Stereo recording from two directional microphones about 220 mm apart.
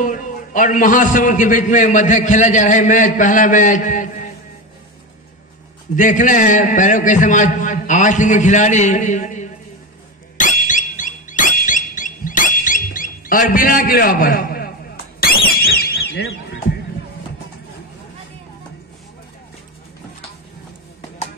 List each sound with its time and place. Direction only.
0.0 s a man's voice: 35° left (ahead or behind)
5.9 s a man's voice: 35° left (ahead or behind)
10.3 s squeak: 35° left (ahead or behind)
15.1 s alarm: 45° left (ahead or behind)